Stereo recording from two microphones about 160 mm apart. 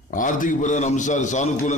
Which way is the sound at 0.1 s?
55° left (ahead or behind).